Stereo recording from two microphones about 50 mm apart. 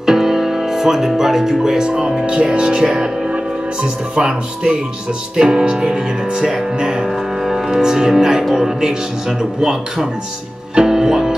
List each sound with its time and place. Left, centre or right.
0.0 s speech: centre
10.7 s music: centre